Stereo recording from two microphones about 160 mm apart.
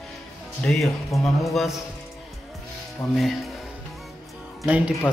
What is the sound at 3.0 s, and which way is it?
Speech, 20° left (ahead or behind).